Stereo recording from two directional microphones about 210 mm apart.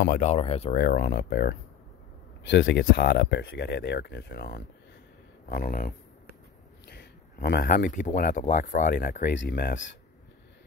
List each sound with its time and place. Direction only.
0.0 s speech: 35° left (ahead or behind)
0.7 s speech: 45° left (ahead or behind)